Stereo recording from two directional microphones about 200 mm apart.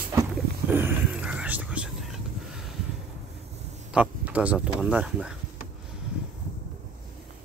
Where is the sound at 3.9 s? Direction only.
5° right (ahead or behind).